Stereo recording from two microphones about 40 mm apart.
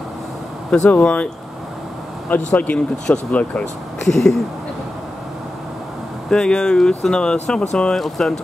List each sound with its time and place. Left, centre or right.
0.7 s speech: left
2.2 s speech: left
3.3 s speech: left
4.0 s speech: centre
6.3 s speech: centre
7.9 s speech: centre